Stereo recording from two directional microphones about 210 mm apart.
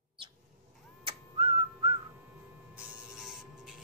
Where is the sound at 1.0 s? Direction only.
25° right (ahead or behind).